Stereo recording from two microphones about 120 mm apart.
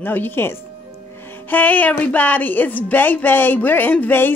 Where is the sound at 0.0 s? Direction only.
15° left (ahead or behind).